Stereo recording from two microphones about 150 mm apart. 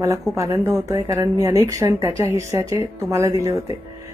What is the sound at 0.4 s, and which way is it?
Speech, 20° right (ahead or behind).